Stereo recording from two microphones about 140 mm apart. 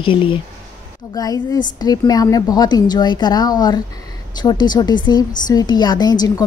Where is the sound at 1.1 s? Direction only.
25° left (ahead or behind).